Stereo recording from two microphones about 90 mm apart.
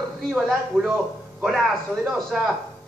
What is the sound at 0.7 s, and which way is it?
Speech, 5° left (ahead or behind).